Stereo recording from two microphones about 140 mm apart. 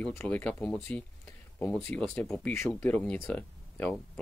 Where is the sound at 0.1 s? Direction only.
15° left (ahead or behind).